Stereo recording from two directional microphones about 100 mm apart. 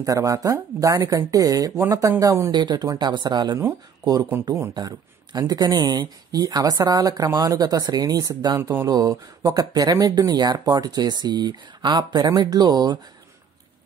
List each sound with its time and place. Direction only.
0.0 s speech: 35° right (ahead or behind)
2.5 s speech: 45° right (ahead or behind)